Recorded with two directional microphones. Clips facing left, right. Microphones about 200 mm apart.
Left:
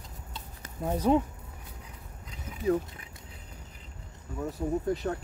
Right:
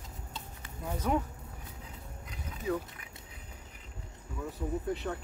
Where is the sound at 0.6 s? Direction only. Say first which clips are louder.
Left 8 dB; 40° left (ahead or behind).